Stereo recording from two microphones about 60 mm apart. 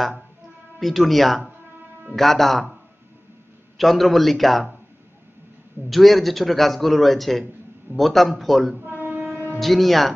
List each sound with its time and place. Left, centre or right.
0.7 s a man's voice: centre
5.9 s a man's voice: centre
8.7 s a sound: right
9.6 s a man's voice: centre